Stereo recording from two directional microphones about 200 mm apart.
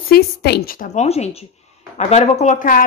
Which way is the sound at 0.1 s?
50° left (ahead or behind).